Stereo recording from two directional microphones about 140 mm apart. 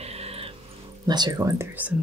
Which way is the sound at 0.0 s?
45° right (ahead or behind).